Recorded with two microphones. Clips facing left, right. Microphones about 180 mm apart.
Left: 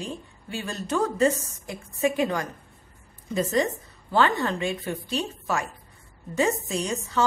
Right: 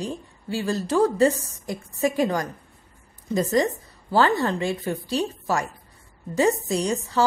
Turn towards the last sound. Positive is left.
turn(degrees=-35)  # may be behind; listen again after turning